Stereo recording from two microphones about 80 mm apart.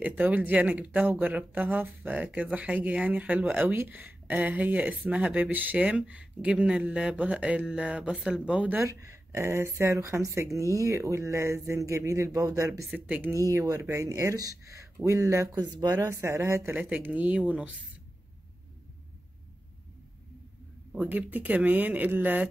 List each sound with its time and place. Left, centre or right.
0.0 s speech: centre
8.8 s speech: right
12.9 s speech: centre
13.5 s speech: right
15.6 s speech: right
16.0 s speech: right
16.7 s speech: centre
20.9 s speech: centre